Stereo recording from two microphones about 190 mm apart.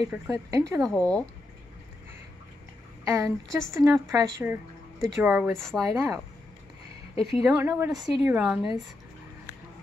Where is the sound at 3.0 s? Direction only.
15° right (ahead or behind).